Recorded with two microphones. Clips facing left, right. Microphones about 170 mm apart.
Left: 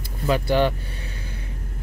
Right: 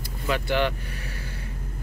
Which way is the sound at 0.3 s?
35° left (ahead or behind).